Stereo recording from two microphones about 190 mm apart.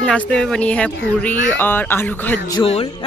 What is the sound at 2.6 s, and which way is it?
Music, 30° left (ahead or behind).